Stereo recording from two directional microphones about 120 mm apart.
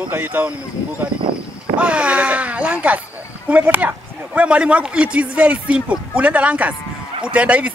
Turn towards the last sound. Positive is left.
turn(degrees=-10)  # may be behind; listen again after turning